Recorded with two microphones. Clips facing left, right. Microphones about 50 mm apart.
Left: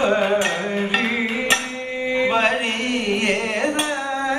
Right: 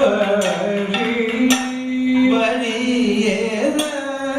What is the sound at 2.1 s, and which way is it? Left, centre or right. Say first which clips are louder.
Carnatic music: right 2 dB; centre.